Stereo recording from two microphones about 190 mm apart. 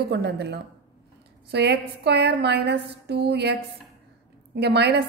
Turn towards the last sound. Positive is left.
turn(degrees=-60)  # may be behind; listen again after turning